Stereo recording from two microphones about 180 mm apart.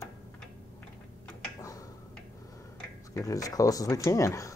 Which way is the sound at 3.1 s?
20° left (ahead or behind).